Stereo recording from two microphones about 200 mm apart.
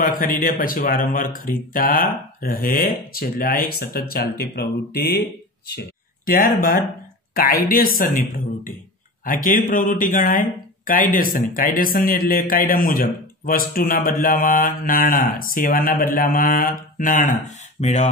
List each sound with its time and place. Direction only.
0.0 s speech: 45° left (ahead or behind)